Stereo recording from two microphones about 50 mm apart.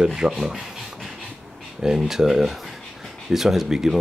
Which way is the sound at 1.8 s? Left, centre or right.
Centre.